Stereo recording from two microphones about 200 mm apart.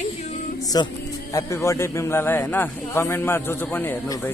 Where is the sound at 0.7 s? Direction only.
20° left (ahead or behind).